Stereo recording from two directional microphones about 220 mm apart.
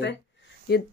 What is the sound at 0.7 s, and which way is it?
Speech, 50° left (ahead or behind).